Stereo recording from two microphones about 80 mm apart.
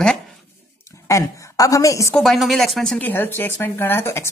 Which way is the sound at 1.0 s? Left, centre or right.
Left.